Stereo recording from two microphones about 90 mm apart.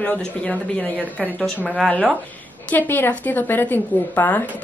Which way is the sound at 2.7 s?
20° left (ahead or behind).